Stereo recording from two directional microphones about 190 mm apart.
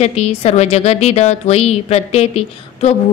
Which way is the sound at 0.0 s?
35° left (ahead or behind).